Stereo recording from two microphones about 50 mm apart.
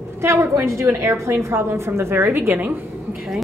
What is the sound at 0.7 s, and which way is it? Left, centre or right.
A woman's voice, right.